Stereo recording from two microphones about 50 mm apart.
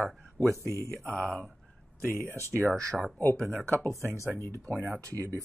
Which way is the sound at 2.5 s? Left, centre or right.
Centre.